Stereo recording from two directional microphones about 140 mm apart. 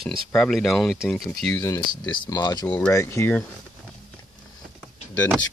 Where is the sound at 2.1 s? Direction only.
30° left (ahead or behind); by 3.4 s 15° left (ahead or behind).